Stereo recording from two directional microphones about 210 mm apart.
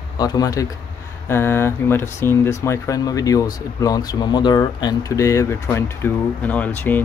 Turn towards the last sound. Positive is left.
turn(degrees=10)  # may be behind; listen again after turning